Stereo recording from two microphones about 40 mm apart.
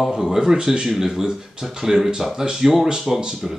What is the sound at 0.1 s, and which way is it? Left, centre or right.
Speech, centre.